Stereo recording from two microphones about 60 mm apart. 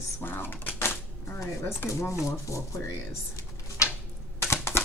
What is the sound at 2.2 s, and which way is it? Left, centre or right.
Speech, left.